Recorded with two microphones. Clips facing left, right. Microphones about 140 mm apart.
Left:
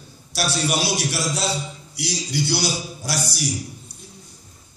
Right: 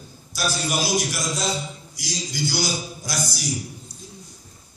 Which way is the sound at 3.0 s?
30° left (ahead or behind).